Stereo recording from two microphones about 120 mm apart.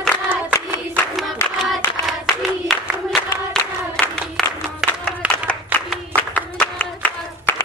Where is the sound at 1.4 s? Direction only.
20° left (ahead or behind).